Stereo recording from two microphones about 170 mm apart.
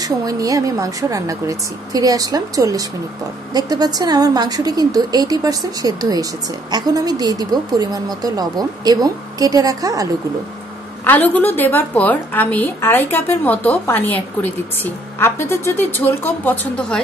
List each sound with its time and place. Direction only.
0.0 s speech: 20° right (ahead or behind)
11.1 s a woman's voice: 10° left (ahead or behind)